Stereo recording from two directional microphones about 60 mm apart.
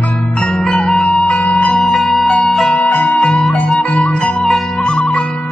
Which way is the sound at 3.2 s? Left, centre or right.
Centre.